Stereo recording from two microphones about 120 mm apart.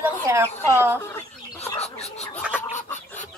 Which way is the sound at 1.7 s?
60° left (ahead or behind).